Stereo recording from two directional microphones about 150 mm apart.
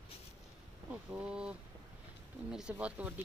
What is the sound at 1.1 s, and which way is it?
Speech, 5° right (ahead or behind).